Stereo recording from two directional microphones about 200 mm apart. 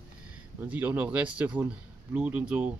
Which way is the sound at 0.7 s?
10° right (ahead or behind).